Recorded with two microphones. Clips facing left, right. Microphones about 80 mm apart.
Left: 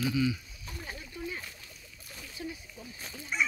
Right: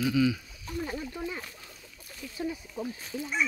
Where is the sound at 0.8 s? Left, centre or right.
Right.